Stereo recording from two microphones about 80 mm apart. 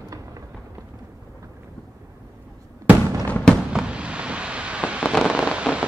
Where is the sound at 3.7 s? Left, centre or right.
Centre.